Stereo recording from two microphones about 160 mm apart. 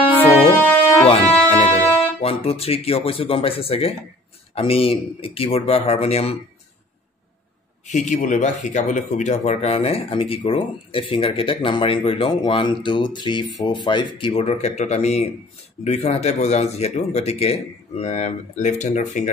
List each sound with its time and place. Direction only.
1.0 s music: 40° left (ahead or behind)
2.2 s speech: 40° left (ahead or behind)
7.8 s speech: 50° left (ahead or behind)